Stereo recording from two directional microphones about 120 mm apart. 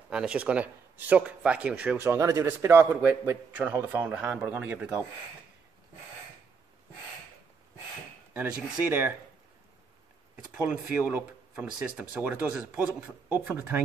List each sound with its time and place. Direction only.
0.1 s speech: 5° right (ahead or behind)
8.3 s speech: 15° right (ahead or behind)
10.3 s speech: 10° right (ahead or behind)